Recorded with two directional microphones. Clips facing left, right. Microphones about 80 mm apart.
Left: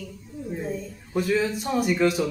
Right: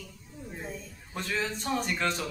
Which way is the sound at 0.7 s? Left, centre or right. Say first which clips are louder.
Left 9 dB; centre.